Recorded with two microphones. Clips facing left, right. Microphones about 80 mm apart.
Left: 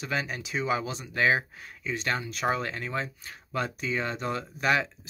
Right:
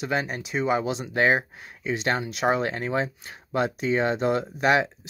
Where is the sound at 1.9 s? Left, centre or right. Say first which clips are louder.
Right 5 dB; right.